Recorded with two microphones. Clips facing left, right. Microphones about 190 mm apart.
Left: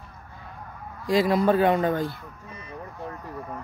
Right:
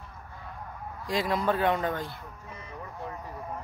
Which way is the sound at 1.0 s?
5° left (ahead or behind).